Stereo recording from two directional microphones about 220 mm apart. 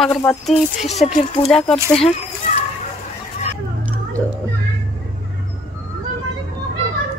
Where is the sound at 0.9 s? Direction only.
30° left (ahead or behind).